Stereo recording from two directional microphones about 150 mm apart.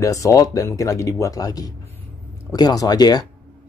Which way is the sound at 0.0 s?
20° left (ahead or behind).